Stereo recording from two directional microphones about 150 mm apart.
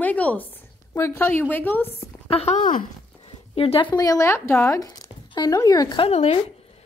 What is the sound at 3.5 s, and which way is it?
Speech, 40° left (ahead or behind).